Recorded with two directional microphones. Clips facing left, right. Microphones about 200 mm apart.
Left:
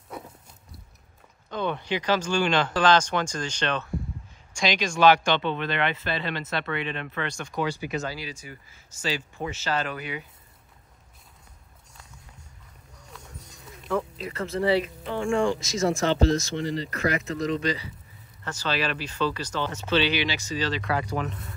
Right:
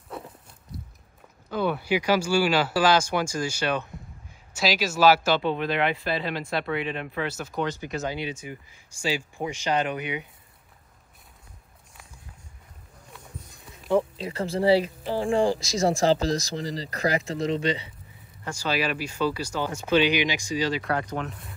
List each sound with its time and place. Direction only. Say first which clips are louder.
1.5 s speech: right 3 dB; 5° right (ahead or behind)
8.0 s speech: right 4 dB; 20° right (ahead or behind)
13.8 s speech: right 5 dB; 30° right (ahead or behind)
18.4 s speech: right 1 dB; 10° right (ahead or behind)